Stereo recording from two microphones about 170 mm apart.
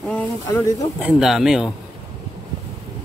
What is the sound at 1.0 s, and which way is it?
Speech, 5° right (ahead or behind).